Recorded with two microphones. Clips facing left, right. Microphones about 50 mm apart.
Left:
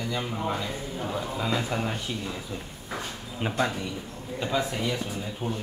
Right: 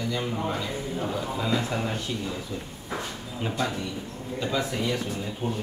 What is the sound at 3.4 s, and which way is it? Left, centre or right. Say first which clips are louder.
Speech: left 2 dB; left.